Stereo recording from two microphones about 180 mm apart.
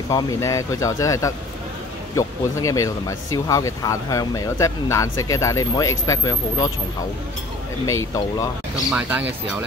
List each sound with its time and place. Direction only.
0.1 s speech: 20° left (ahead or behind)
7.8 s speech: 20° left (ahead or behind)